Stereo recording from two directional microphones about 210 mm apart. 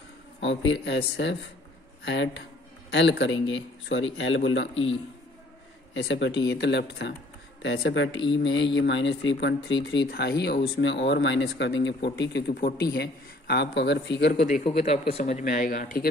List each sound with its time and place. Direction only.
0.4 s speech: 60° left (ahead or behind)
5.9 s a man's voice: 55° left (ahead or behind)
14.4 s speech: 35° left (ahead or behind)